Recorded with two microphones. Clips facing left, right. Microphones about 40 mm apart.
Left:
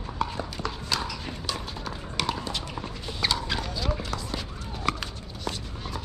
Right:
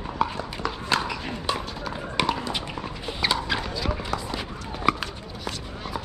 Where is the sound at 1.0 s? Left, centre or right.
Right.